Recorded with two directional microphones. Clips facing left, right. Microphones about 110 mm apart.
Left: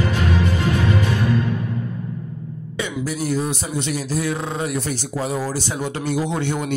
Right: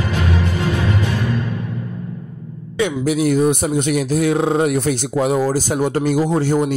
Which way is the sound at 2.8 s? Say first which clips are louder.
Right 8 dB; 65° right (ahead or behind).